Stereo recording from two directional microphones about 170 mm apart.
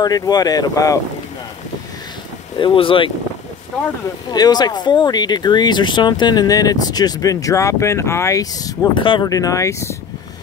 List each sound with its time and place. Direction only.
0.0 s speech: 25° left (ahead or behind)
2.5 s speech: 30° left (ahead or behind)
4.3 s speech: 25° left (ahead or behind)